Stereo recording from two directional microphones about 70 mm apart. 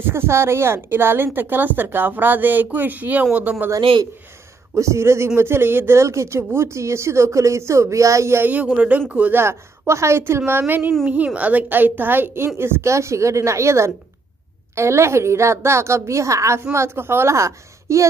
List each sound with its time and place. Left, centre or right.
0.0 s a woman's voice: right
4.7 s speech: right
8.5 s a woman's voice: right
9.4 s a woman's voice: right